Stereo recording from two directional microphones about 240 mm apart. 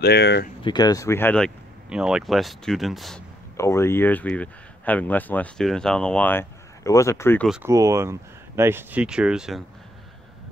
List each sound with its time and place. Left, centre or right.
0.0 s speech: left
0.7 s speech: centre
3.5 s speech: centre
7.4 s speech: centre